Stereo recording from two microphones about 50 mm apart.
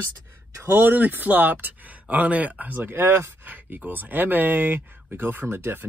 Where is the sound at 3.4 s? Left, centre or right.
Right.